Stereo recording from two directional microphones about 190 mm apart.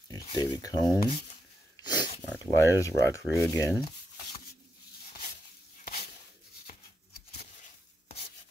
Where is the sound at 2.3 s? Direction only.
15° left (ahead or behind).